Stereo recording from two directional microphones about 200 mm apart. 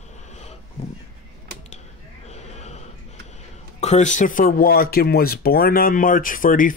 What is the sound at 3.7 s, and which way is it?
Speech, 35° left (ahead or behind).